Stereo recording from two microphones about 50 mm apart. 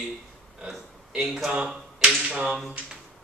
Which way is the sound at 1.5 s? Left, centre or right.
Centre.